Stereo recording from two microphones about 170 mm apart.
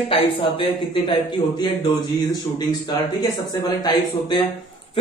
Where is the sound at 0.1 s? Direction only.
30° left (ahead or behind).